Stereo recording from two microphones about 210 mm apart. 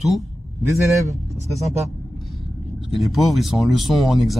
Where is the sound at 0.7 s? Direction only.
15° right (ahead or behind).